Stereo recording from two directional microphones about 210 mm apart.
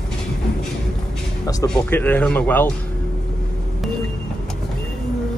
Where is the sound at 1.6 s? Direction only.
10° left (ahead or behind).